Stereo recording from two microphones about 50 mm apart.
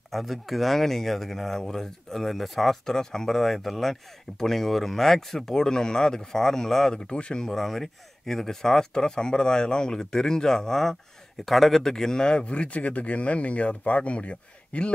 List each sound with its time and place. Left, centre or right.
0.1 s speech: centre
7.1 s speech: centre